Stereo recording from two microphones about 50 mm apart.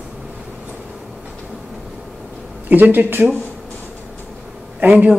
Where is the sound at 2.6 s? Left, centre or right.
Right.